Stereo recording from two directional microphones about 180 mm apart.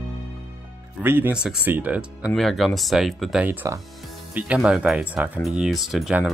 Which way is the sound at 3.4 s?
10° right (ahead or behind).